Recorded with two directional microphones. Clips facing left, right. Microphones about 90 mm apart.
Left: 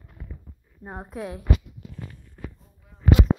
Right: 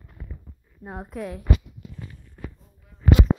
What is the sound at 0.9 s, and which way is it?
Speech, 20° left (ahead or behind).